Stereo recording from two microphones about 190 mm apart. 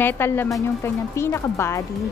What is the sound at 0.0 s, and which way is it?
Speech, 10° left (ahead or behind).